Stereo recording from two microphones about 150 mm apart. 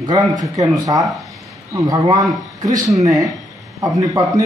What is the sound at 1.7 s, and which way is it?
A man's voice, 20° right (ahead or behind).